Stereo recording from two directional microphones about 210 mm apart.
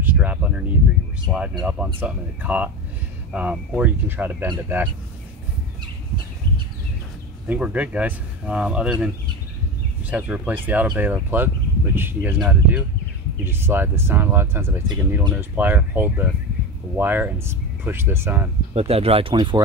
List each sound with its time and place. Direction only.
0.0 s a sound: 10° right (ahead or behind)
1.3 s speech: 5° right (ahead or behind)
7.4 s speech: 5° right (ahead or behind)
18.8 s speech: 30° right (ahead or behind)